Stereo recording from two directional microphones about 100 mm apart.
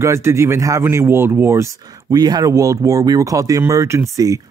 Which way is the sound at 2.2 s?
40° right (ahead or behind).